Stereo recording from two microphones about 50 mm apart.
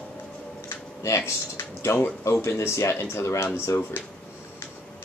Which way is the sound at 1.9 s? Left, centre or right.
Left.